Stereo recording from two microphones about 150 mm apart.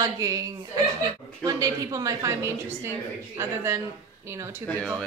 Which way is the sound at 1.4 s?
25° right (ahead or behind).